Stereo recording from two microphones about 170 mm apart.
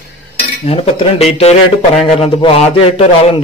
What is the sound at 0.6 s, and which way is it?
A man's voice, 35° left (ahead or behind).